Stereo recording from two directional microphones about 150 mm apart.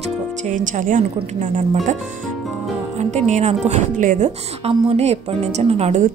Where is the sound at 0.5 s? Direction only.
60° right (ahead or behind).